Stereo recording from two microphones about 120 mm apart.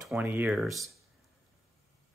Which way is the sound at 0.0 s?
10° right (ahead or behind).